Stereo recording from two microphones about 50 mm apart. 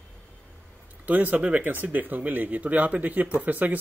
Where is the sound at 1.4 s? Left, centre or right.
Right.